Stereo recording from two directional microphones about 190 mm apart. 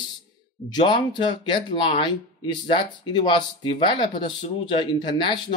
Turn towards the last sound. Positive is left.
turn(degrees=25)  # may be behind; listen again after turning